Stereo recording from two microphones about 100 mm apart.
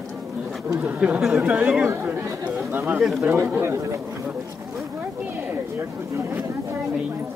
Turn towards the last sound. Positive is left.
turn(degrees=-25)  # may be behind; listen again after turning